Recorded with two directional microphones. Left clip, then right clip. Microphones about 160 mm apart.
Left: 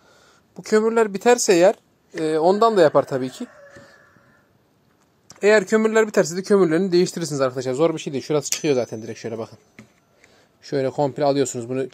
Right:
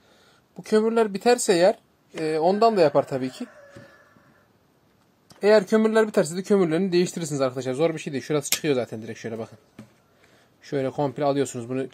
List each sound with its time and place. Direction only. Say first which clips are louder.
0.2 s speech: left 4 dB; 35° left (ahead or behind)
5.4 s speech: left 2 dB; 35° left (ahead or behind)
10.6 s speech: left 4 dB; 35° left (ahead or behind)